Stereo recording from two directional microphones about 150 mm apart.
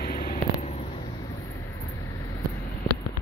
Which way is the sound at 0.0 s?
65° left (ahead or behind).